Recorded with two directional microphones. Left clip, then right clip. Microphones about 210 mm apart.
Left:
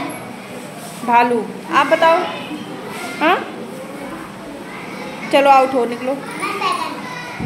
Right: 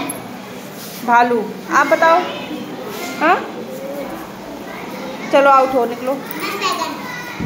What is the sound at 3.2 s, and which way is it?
Speech, 15° left (ahead or behind).